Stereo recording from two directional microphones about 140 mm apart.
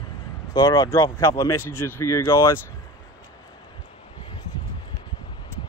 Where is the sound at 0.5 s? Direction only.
30° left (ahead or behind).